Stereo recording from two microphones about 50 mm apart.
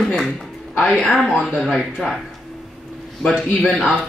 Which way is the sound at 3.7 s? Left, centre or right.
Centre.